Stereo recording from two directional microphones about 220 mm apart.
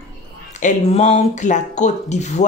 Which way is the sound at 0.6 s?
30° left (ahead or behind).